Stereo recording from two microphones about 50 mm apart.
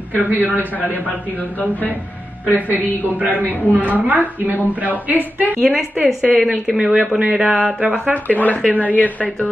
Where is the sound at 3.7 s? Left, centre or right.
Left.